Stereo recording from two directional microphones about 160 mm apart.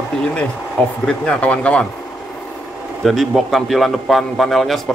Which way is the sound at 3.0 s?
Centre (ahead or behind).